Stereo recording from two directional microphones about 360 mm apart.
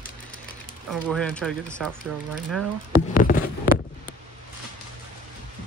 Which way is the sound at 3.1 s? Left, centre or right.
Left.